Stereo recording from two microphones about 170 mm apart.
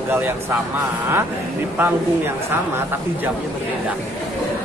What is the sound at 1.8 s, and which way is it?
Speech, 10° right (ahead or behind).